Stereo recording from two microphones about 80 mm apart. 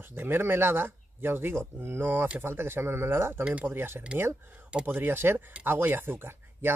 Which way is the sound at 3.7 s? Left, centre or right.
Right.